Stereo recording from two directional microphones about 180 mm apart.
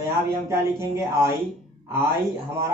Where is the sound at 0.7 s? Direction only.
15° right (ahead or behind).